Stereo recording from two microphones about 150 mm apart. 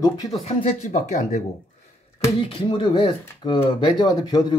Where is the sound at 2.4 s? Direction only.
35° left (ahead or behind).